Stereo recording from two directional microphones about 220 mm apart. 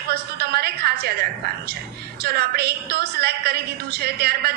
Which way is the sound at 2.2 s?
45° right (ahead or behind).